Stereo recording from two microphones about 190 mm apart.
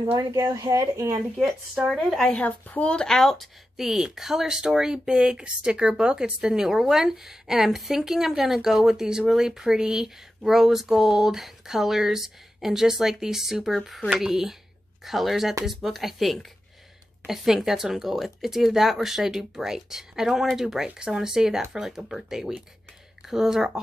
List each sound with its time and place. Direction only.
0.0 s speech: 20° right (ahead or behind)
1.3 s speech: centre (ahead or behind)